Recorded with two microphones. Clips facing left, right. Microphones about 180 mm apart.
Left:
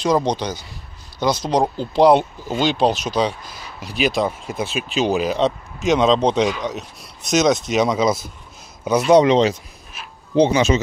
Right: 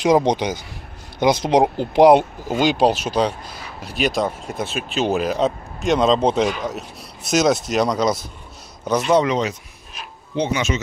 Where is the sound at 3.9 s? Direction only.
Centre (ahead or behind).